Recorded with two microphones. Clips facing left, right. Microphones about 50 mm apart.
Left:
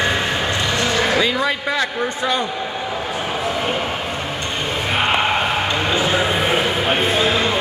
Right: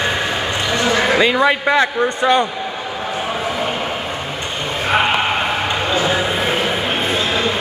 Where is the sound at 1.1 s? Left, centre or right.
Centre.